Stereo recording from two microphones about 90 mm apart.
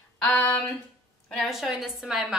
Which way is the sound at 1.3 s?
Centre (ahead or behind).